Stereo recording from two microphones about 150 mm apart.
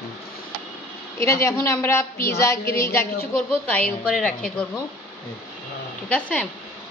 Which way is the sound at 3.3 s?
10° left (ahead or behind).